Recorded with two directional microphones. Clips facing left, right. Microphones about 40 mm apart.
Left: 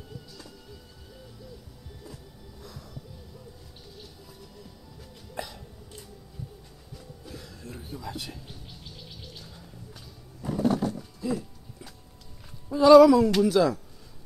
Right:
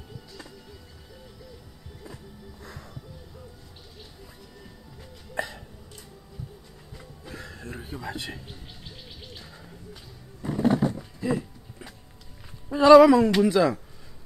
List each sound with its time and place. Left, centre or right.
7.0 s music: right
10.4 s roaring cats: right
11.1 s a sound: right
12.7 s speech: right